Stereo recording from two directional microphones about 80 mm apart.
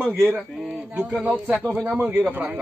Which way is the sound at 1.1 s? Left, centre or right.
Centre.